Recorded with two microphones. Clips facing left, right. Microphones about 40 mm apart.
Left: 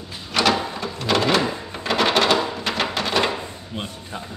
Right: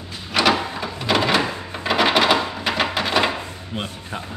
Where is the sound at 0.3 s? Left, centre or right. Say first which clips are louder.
Right 1 dB; centre.